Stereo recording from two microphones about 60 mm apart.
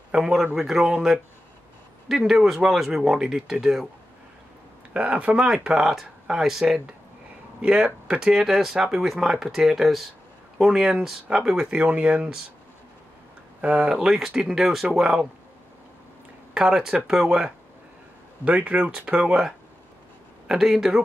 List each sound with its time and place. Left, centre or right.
0.1 s speech: centre
4.9 s speech: right
7.6 s speech: centre
11.8 s speech: right
13.6 s speech: centre
16.5 s speech: centre
18.4 s speech: right
20.4 s speech: centre